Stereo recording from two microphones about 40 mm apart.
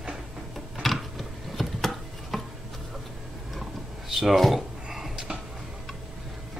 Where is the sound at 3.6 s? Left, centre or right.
Centre.